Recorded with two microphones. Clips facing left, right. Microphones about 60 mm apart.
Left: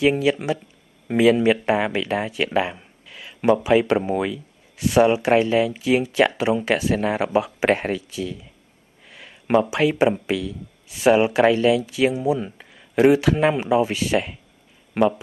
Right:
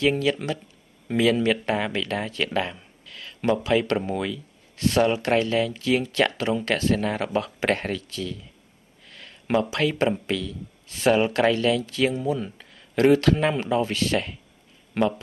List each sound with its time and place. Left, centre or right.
0.0 s speech: centre